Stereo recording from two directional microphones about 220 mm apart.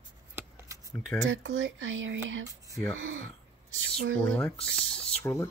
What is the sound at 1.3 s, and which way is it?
Speech, 60° right (ahead or behind).